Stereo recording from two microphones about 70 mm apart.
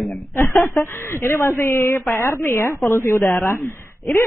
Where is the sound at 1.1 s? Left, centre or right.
Left.